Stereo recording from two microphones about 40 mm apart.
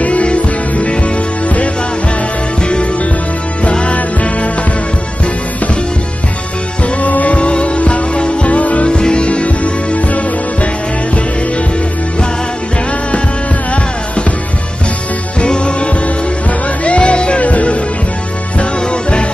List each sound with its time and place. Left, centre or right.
0.0 s music: left
3.7 s music: left
7.0 s music: left
7.3 s music: left
8.9 s music: left
15.4 s music: left
18.6 s music: left